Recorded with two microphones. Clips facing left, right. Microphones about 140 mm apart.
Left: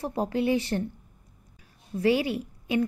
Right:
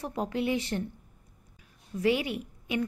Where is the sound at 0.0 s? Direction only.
30° left (ahead or behind).